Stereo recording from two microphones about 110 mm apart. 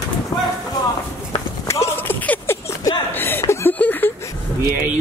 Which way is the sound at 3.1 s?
20° left (ahead or behind).